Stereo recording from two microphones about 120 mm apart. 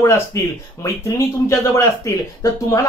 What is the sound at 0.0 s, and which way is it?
Speech, 25° left (ahead or behind).